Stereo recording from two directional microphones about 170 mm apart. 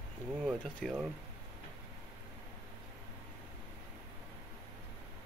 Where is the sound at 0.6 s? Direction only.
5° left (ahead or behind).